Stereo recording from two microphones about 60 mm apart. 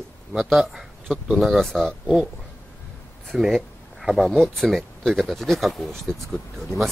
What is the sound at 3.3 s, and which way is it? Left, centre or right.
Speech, centre.